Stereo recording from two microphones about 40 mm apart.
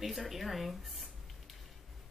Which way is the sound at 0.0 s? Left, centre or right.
Centre.